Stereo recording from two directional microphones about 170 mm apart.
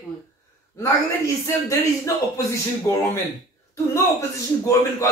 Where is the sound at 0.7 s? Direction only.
20° left (ahead or behind).